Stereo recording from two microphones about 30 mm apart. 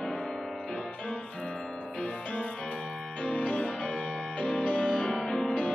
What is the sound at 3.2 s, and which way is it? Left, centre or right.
Music, left.